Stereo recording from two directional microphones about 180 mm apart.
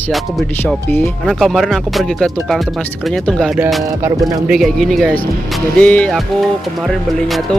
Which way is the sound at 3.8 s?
20° right (ahead or behind).